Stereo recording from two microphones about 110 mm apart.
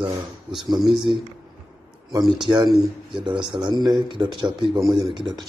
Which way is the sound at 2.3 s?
45° right (ahead or behind).